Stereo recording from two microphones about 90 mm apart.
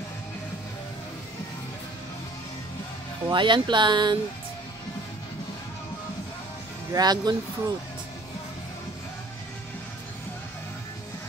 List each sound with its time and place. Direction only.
3.3 s speech: 60° right (ahead or behind)
6.9 s speech: 50° right (ahead or behind)